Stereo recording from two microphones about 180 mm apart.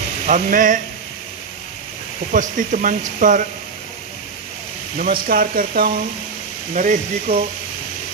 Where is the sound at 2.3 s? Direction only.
45° right (ahead or behind).